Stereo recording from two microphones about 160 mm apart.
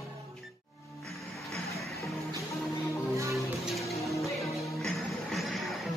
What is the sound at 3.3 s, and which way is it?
Music, centre (ahead or behind).